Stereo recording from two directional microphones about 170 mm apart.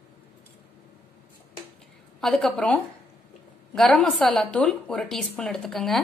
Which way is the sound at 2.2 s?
Centre (ahead or behind).